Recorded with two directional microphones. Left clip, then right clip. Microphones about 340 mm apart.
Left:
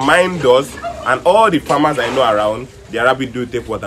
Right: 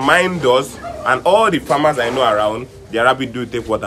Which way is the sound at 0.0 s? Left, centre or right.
Centre.